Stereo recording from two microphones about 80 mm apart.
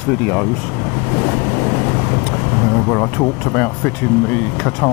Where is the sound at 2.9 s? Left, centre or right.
Left.